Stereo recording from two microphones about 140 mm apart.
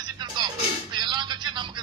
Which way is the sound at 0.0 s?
30° right (ahead or behind).